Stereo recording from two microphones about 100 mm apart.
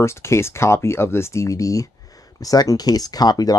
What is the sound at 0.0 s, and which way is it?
Speech, 25° left (ahead or behind).